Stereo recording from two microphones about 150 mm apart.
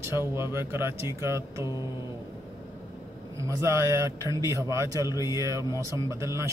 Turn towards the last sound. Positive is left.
turn(degrees=-20)  # may be behind; listen again after turning